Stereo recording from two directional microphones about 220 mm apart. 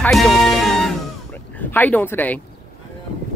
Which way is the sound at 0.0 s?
Centre (ahead or behind).